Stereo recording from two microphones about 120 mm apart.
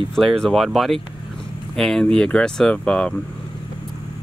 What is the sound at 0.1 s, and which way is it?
Speech, 5° left (ahead or behind).